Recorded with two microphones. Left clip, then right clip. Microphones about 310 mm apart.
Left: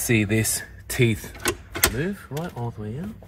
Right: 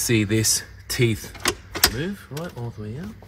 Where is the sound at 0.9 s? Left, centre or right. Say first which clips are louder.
Even; centre.